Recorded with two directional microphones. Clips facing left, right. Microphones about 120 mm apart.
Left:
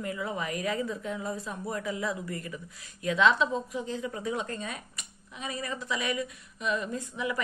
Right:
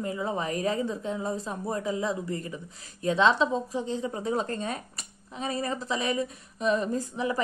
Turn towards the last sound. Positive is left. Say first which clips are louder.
# right 4 dB
turn(degrees=-35)  # may be behind; listen again after turning